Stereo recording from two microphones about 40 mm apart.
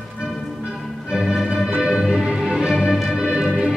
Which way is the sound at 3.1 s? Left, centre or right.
Centre.